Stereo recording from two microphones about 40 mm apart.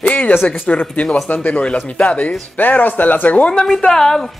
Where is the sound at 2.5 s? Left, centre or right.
Left.